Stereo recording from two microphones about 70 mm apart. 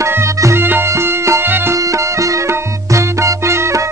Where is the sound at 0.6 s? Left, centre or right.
Right.